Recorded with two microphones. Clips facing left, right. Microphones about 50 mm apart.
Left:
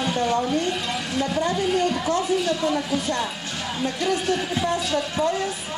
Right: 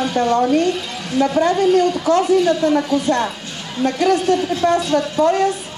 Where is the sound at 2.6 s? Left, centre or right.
Right.